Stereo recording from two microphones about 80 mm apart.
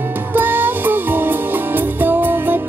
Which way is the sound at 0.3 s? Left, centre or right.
Right.